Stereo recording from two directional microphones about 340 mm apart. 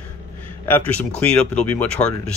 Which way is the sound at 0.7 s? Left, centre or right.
Centre.